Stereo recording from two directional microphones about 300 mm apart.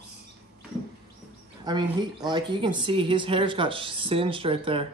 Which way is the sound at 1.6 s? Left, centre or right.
Centre.